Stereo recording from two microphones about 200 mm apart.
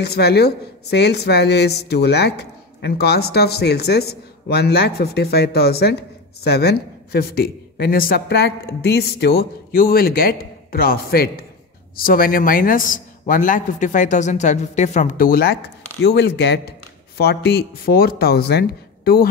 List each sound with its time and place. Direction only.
0.0 s a woman's voice: 55° left (ahead or behind)
16.0 s a woman's voice: 55° left (ahead or behind)